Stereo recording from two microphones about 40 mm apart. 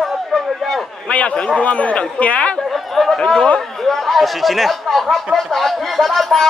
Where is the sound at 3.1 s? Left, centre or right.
Centre.